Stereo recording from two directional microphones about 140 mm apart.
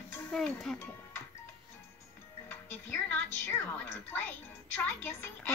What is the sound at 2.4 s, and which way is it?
Music, 15° left (ahead or behind).